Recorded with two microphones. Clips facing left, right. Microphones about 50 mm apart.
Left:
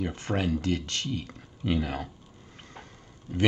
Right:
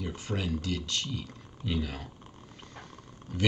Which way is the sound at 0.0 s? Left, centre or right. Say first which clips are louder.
Left 5 dB; left.